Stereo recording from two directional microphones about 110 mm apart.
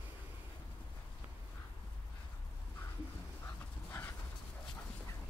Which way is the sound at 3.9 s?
20° left (ahead or behind).